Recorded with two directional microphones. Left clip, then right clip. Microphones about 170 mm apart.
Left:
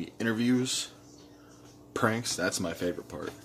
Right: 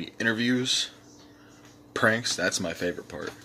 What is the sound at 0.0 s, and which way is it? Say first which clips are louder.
Speech: right 4 dB; 10° left (ahead or behind).